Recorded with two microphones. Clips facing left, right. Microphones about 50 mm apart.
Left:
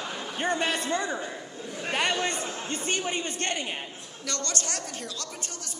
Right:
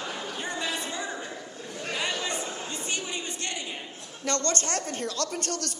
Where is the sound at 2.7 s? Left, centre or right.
Left.